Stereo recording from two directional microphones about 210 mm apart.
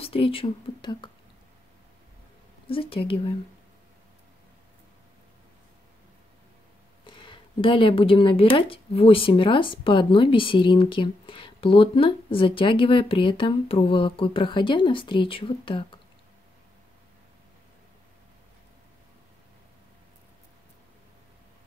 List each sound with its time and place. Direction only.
0.0 s speech: 25° left (ahead or behind)
2.6 s speech: 25° left (ahead or behind)
7.1 s speech: 25° left (ahead or behind)